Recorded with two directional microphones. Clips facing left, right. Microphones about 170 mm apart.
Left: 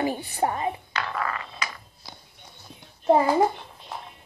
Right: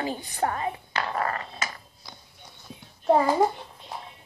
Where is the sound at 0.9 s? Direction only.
40° right (ahead or behind).